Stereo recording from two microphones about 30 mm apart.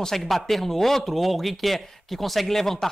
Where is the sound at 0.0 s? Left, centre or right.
Centre.